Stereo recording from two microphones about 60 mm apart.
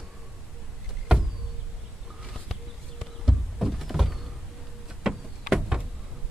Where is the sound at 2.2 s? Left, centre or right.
Centre.